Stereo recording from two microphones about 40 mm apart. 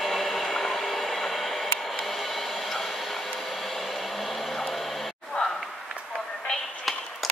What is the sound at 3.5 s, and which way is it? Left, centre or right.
Hair dryer, centre.